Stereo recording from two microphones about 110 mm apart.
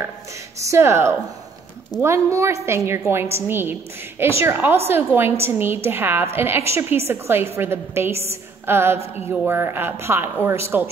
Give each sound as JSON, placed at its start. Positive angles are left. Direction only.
{"t": 0.6, "sound": "a woman's voice", "side_deg": -25}